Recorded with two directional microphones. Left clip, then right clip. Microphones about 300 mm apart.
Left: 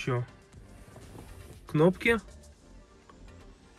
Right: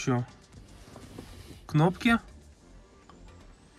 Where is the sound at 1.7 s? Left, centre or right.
Centre.